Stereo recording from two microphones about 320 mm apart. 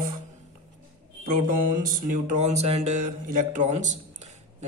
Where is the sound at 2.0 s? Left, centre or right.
Right.